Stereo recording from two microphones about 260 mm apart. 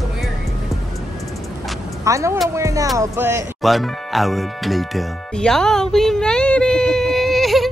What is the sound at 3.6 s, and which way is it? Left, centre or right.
Music, centre.